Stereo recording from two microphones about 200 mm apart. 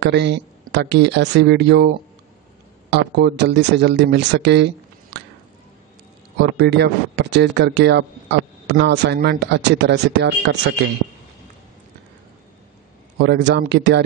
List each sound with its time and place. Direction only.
0.0 s speech: 60° right (ahead or behind)
2.9 s speech: 55° right (ahead or behind)
5.1 s a sound: 60° right (ahead or behind)
6.5 s speech: 55° right (ahead or behind)
13.2 s speech: 60° right (ahead or behind)